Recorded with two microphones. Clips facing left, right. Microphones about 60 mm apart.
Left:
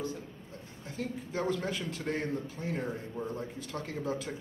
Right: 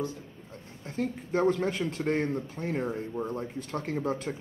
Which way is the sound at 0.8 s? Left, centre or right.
Right.